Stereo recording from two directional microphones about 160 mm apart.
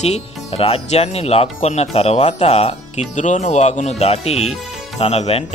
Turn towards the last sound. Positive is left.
turn(degrees=40)  # may be behind; listen again after turning